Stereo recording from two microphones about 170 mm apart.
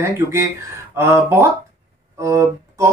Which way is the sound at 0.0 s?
15° right (ahead or behind).